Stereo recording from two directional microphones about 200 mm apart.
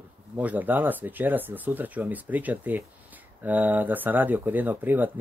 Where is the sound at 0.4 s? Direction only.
10° right (ahead or behind).